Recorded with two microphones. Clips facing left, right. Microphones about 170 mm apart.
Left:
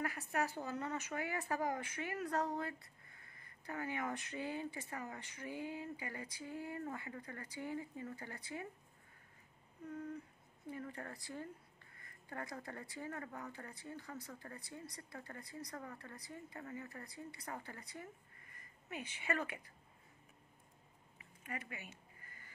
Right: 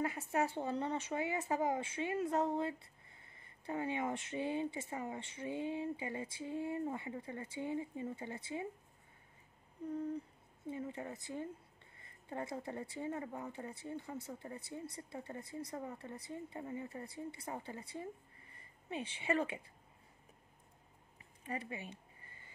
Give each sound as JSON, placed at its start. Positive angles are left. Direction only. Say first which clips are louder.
{"t": 0.0, "sound": "speech", "louder": "right 4 dB", "side_deg": -25}
{"t": 10.7, "sound": "speech", "louder": "right 4 dB", "side_deg": -20}
{"t": 21.2, "sound": "a sound", "louder": "right 5 dB", "side_deg": -30}